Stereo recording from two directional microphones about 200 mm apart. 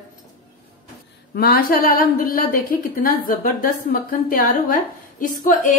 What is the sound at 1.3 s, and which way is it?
A woman's voice, 50° left (ahead or behind).